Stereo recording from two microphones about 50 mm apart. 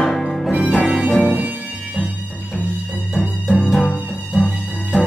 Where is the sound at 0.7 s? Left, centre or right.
Centre.